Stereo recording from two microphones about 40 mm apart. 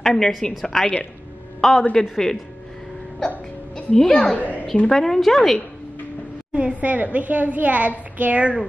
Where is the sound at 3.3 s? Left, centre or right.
Left.